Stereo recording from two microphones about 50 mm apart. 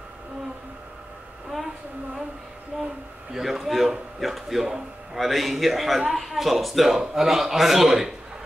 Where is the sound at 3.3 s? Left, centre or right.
Centre.